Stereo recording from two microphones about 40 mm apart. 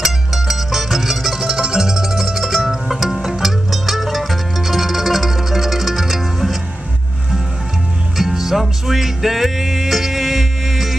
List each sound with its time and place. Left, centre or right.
0.0 s music: centre
8.2 s music: centre